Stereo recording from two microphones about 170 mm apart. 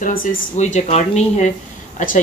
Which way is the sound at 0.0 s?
50° left (ahead or behind).